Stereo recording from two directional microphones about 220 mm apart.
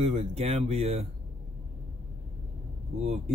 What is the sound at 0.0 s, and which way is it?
Speech, 30° right (ahead or behind).